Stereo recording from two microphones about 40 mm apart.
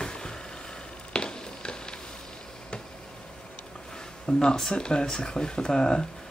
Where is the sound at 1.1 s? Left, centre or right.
Left.